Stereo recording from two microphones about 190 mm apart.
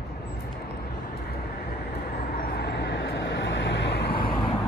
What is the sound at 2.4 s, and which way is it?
Vehicle, 60° left (ahead or behind).